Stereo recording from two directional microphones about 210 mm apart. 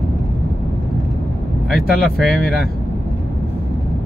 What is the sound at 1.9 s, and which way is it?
Speech, centre (ahead or behind).